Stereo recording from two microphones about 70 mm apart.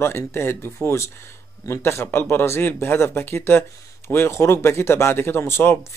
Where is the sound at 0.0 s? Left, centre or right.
Left.